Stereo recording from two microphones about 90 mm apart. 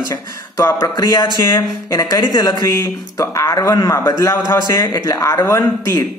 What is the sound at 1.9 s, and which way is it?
A man's voice, 45° left (ahead or behind).